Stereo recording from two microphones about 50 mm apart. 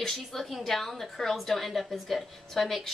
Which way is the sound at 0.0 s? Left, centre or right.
Centre.